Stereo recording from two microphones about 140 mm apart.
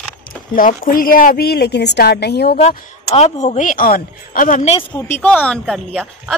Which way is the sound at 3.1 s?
50° left (ahead or behind).